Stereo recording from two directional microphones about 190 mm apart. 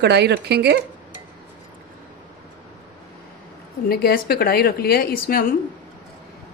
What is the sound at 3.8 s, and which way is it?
A woman's voice, 55° left (ahead or behind).